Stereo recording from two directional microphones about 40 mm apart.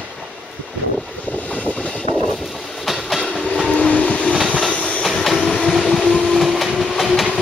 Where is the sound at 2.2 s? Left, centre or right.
Centre.